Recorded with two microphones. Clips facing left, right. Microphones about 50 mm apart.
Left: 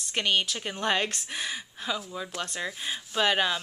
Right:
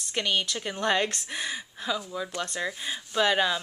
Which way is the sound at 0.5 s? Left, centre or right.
Centre.